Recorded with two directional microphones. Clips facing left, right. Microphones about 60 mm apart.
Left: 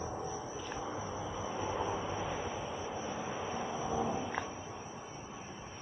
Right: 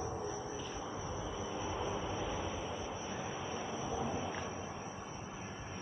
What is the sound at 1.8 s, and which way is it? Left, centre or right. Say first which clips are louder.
Vehicle: left 2 dB; centre.